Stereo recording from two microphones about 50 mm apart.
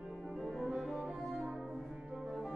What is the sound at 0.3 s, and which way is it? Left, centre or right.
French horn, centre.